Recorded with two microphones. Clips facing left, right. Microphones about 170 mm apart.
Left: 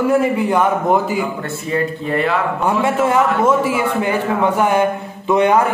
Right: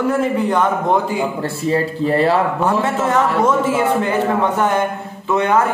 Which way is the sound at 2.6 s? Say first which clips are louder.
Left 1 dB; 10° left (ahead or behind).